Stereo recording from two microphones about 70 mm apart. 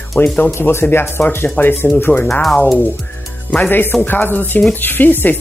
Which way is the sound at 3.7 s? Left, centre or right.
Left.